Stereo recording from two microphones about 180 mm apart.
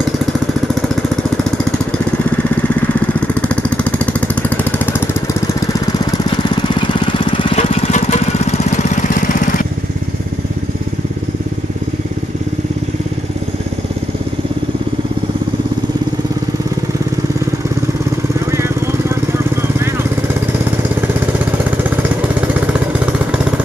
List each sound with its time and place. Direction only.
3.4 s jackhammer: 5° left (ahead or behind)
6.5 s lawn mower: 25° left (ahead or behind); by 9.6 s 45° left (ahead or behind)
18.5 s vehicle: 15° right (ahead or behind)